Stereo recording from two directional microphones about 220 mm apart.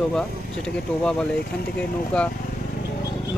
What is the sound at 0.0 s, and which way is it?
Speech, 5° left (ahead or behind).